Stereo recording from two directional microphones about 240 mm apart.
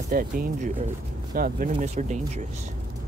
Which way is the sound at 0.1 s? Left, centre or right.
Right.